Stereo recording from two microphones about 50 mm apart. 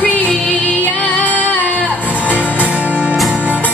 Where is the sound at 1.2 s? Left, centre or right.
Left.